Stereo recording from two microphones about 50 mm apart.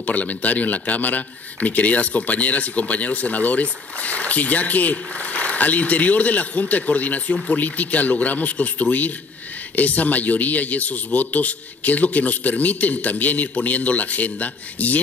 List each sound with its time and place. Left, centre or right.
0.0 s a man's voice: left